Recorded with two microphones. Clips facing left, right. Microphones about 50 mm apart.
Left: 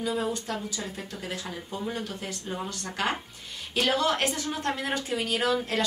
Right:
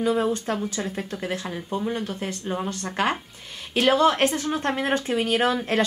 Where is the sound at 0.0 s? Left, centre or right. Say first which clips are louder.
Right 6 dB; right.